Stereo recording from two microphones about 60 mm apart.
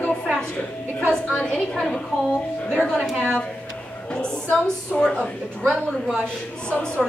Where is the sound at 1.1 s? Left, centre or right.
Centre.